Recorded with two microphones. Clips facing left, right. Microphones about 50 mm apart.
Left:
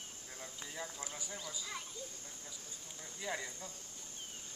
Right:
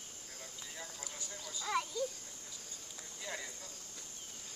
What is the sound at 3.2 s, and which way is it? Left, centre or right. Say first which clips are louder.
Speech: left 3 dB; centre.